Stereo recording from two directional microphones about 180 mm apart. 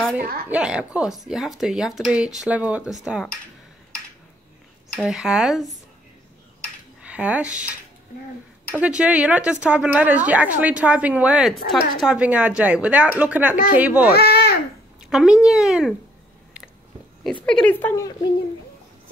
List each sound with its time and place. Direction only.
0.5 s speech: 5° right (ahead or behind)
4.9 s speech: centre (ahead or behind)
7.0 s speech: 5° right (ahead or behind)
8.7 s a woman's voice: 5° right (ahead or behind)
14.1 s babbling: 60° left (ahead or behind)
15.0 s speech: 5° right (ahead or behind)
17.5 s speech: 5° left (ahead or behind)